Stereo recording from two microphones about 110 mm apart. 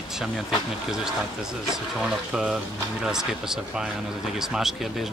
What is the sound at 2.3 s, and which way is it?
Speech, 5° right (ahead or behind).